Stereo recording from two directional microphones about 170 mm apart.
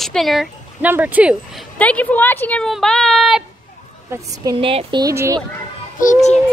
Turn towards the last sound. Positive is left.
turn(degrees=45)  # may be behind; listen again after turning